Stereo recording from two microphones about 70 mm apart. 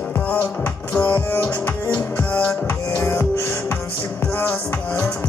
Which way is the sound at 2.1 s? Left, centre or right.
Left.